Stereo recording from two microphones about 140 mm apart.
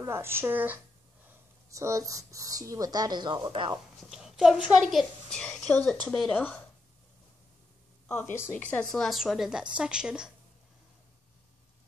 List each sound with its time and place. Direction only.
0.0 s speech: 15° right (ahead or behind)
4.0 s a woman's voice: 5° right (ahead or behind)
5.3 s a woman's voice: 5° left (ahead or behind)
6.3 s a woman's voice: 15° left (ahead or behind)
8.1 s a woman's voice: 15° left (ahead or behind)
9.0 s a woman's voice: centre (ahead or behind)